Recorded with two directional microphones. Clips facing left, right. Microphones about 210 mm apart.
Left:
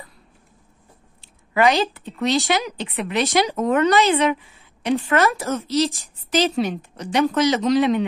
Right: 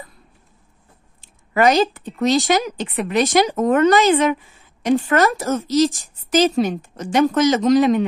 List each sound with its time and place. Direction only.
1.2 s a woman's voice: 45° right (ahead or behind)